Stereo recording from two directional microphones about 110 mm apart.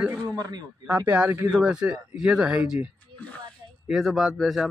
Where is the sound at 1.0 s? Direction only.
15° right (ahead or behind).